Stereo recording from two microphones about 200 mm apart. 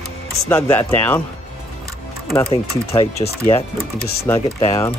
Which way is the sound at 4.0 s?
50° left (ahead or behind).